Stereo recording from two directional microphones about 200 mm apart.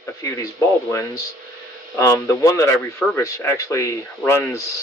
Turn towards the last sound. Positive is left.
turn(degrees=15)  # may be behind; listen again after turning